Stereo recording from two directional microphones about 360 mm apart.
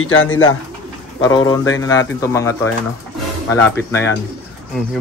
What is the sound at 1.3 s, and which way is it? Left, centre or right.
Speech, centre.